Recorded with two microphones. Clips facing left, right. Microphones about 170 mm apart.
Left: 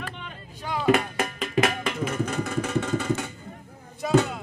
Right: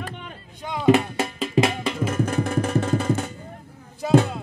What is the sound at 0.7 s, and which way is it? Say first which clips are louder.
Music: right 4 dB; 25° right (ahead or behind).